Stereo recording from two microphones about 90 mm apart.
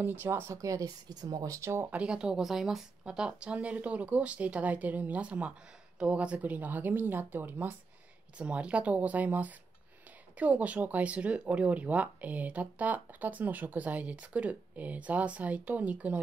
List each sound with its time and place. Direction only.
0.0 s speech: 25° right (ahead or behind); by 1.7 s 40° right (ahead or behind)
1.7 s speech: 25° right (ahead or behind)
2.0 s speech: 10° right (ahead or behind)